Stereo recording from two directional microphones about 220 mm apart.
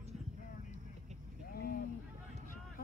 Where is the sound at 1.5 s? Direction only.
45° left (ahead or behind).